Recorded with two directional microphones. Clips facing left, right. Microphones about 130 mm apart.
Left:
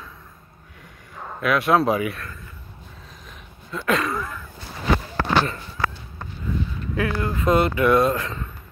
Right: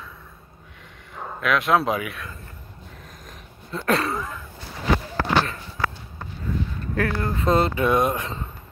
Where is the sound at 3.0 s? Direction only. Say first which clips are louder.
Right 1 dB; 40° right (ahead or behind).